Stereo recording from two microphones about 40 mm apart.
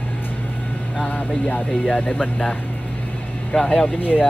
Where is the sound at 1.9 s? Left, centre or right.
Left.